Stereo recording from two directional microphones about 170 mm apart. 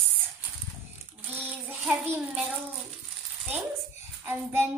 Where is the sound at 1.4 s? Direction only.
10° right (ahead or behind).